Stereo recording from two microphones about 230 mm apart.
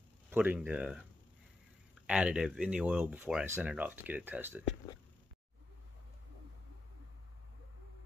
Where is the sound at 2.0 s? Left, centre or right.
Centre.